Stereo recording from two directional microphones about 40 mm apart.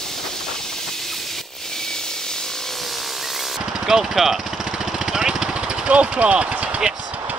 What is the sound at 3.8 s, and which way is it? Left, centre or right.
Speech, centre.